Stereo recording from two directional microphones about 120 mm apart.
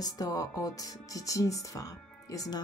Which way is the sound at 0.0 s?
30° left (ahead or behind).